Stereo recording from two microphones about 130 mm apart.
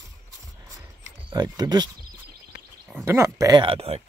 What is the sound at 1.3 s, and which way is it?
Speech, 30° right (ahead or behind).